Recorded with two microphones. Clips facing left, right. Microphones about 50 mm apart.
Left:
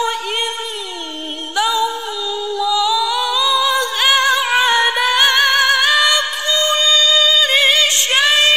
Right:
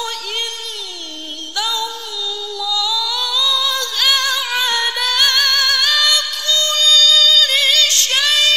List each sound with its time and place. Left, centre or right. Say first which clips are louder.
1.6 s music: left 6 dB; left
2.5 s singing: left 5 dB; left